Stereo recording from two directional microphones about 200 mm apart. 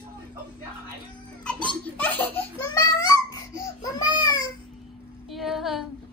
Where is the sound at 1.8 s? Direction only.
10° left (ahead or behind).